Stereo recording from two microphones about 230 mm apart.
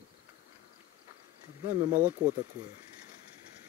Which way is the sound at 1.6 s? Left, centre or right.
Centre.